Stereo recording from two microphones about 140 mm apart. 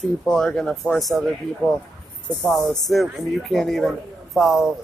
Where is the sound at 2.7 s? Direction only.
Centre (ahead or behind).